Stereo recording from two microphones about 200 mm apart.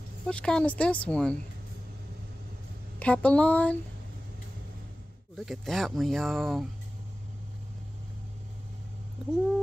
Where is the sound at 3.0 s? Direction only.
5° left (ahead or behind).